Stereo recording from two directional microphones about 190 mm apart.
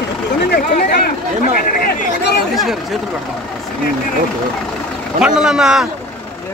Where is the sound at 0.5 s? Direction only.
55° left (ahead or behind).